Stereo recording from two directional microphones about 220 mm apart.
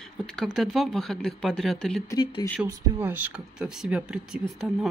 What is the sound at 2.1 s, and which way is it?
Speech, 15° left (ahead or behind).